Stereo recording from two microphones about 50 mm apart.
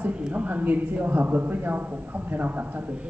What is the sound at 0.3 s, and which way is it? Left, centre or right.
Speech, right.